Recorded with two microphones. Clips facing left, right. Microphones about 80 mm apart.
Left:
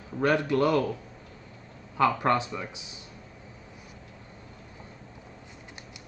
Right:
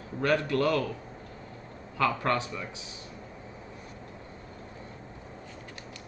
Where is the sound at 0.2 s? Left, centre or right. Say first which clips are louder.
Left 2 dB; centre.